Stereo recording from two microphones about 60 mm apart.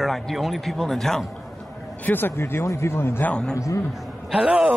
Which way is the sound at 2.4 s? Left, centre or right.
Left.